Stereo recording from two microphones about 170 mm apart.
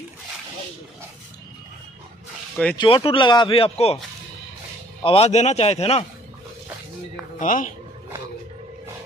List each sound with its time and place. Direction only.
2.5 s speech: 10° left (ahead or behind)
2.8 s speech: 30° left (ahead or behind)
5.0 s speech: 35° left (ahead or behind)
7.3 s speech: 50° left (ahead or behind)